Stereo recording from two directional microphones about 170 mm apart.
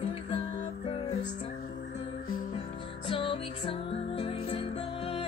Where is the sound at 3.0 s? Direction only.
30° left (ahead or behind).